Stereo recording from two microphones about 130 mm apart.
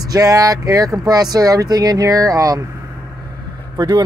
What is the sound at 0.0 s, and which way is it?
Speech, 30° right (ahead or behind).